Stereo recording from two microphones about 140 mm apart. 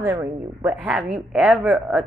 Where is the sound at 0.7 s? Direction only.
10° right (ahead or behind).